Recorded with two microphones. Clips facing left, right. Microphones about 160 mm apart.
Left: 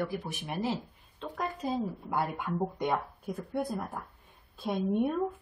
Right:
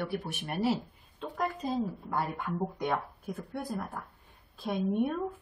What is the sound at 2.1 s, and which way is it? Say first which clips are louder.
A woman's voice: left 1 dB; 5° left (ahead or behind).